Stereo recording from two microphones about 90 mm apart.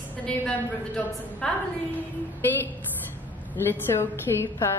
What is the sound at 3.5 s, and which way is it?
A woman's voice, 25° left (ahead or behind).